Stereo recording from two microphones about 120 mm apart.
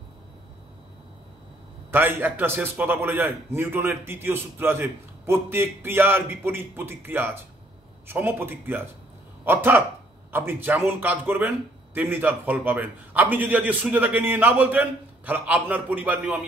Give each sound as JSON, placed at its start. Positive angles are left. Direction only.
{"t": 1.9, "sound": "a man's voice", "side_deg": -15}